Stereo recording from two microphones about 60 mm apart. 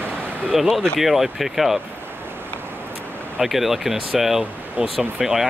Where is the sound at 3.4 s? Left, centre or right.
Centre.